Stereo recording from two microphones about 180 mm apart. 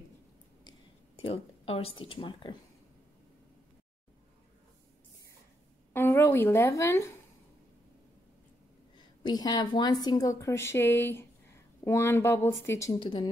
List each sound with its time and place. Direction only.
1.1 s speech: 30° left (ahead or behind)
5.9 s a woman's voice: 15° left (ahead or behind)
8.9 s a woman's voice: 25° left (ahead or behind)
13.0 s speech: 30° left (ahead or behind)